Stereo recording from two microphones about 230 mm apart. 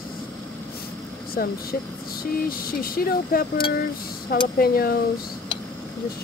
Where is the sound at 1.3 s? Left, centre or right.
Left.